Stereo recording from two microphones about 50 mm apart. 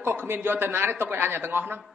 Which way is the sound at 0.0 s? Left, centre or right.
Right.